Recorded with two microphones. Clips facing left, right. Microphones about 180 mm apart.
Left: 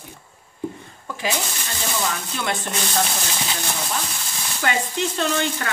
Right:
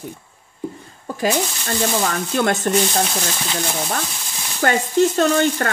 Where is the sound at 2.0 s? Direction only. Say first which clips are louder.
Right 7 dB; 50° right (ahead or behind).